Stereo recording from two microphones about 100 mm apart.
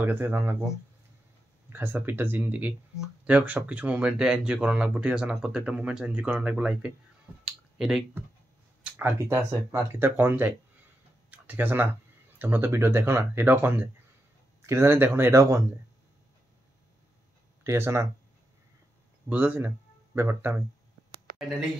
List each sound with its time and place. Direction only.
0.0 s speech: 20° right (ahead or behind)
1.7 s speech: 20° right (ahead or behind)
7.4 s clicking: 5° right (ahead or behind)
8.9 s speech: 25° right (ahead or behind)
17.6 s speech: 25° right (ahead or behind)
19.2 s speech: 20° right (ahead or behind)
21.4 s speech: 5° right (ahead or behind)